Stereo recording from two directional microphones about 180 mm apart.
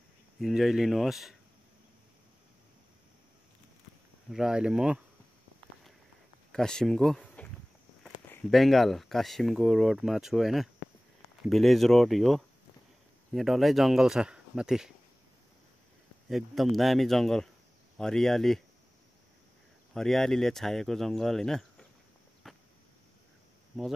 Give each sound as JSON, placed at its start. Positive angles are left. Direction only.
{"t": 0.4, "sound": "speech", "side_deg": 0}
{"t": 4.3, "sound": "speech", "side_deg": -5}
{"t": 6.5, "sound": "speech", "side_deg": 5}
{"t": 16.3, "sound": "speech", "side_deg": 0}
{"t": 19.9, "sound": "speech", "side_deg": 0}
{"t": 22.4, "sound": "a sound", "side_deg": 0}